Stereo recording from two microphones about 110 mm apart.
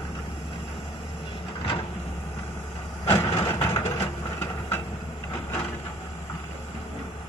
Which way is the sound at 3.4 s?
25° left (ahead or behind).